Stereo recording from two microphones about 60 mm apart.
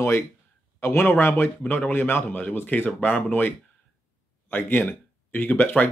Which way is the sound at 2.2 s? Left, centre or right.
Left.